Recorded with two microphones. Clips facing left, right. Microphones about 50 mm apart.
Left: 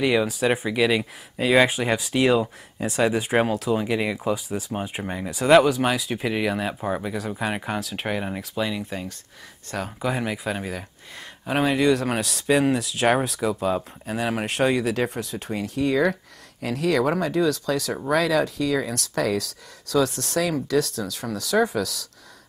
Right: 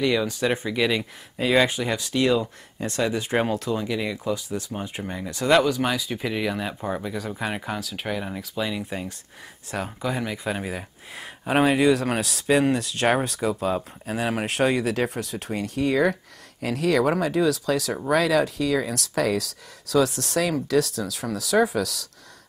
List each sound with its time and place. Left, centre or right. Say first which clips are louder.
0.0 s speech: left 2 dB; centre
1.8 s speech: left 2 dB; centre
3.7 s speech: left 3 dB; centre
8.4 s speech: left 1 dB; centre
10.0 s speech: left 3 dB; centre
10.4 s speech: even; centre